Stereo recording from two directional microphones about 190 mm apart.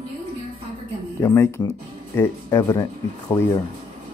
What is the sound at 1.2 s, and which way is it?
Speech, 15° left (ahead or behind).